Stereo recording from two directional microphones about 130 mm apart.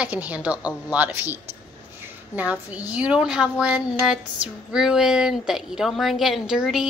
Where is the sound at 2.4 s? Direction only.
10° right (ahead or behind).